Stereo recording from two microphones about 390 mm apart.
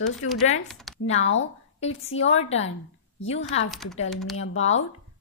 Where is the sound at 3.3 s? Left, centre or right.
Left.